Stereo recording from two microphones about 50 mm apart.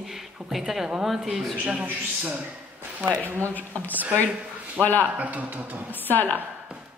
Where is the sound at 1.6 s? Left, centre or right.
Right.